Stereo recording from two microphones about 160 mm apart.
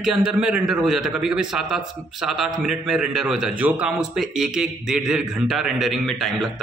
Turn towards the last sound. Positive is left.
turn(degrees=0)  # may be behind; listen again after turning